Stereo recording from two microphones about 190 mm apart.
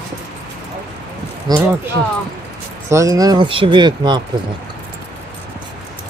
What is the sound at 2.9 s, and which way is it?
Speech, 15° right (ahead or behind).